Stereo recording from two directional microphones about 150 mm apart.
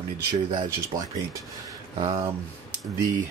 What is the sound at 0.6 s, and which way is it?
Speech, 20° right (ahead or behind).